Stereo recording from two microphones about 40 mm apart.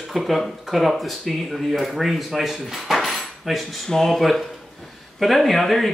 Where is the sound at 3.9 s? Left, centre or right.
Centre.